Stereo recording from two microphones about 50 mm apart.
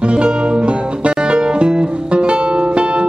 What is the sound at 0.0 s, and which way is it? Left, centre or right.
Music, centre.